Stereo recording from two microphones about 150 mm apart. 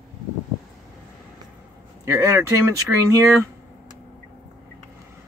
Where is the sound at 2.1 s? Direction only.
20° right (ahead or behind).